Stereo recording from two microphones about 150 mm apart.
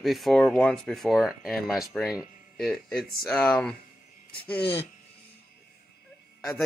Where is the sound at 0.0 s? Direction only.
Centre (ahead or behind).